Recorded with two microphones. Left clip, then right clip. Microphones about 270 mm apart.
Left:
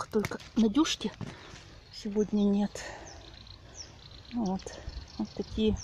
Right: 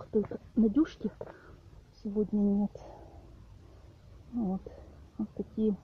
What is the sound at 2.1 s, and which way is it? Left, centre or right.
Speech, left.